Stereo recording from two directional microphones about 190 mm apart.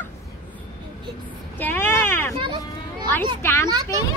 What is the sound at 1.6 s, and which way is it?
Speech, 10° left (ahead or behind).